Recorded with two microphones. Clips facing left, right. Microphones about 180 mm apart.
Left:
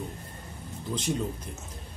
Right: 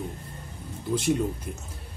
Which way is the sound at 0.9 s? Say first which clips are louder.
Right 6 dB; 10° right (ahead or behind).